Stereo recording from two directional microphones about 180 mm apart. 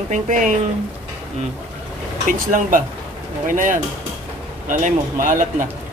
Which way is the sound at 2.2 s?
50° right (ahead or behind).